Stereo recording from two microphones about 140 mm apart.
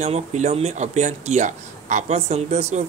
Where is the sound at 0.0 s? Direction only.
55° right (ahead or behind).